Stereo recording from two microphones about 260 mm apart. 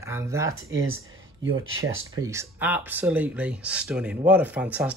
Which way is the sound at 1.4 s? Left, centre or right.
Right.